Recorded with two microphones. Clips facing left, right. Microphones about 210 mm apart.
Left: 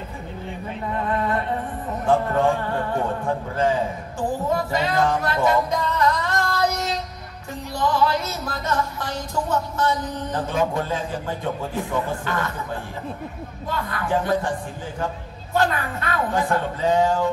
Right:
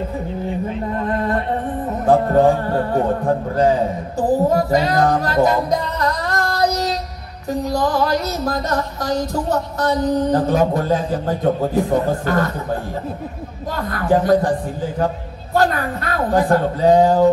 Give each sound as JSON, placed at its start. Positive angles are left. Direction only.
{"t": 2.0, "sound": "music", "side_deg": -35}
{"t": 13.7, "sound": "music", "side_deg": -40}
{"t": 15.5, "sound": "music", "side_deg": -40}